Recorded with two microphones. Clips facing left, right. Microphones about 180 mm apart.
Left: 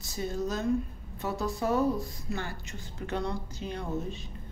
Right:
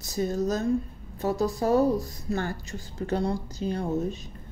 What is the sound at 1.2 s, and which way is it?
A woman's voice, 40° right (ahead or behind).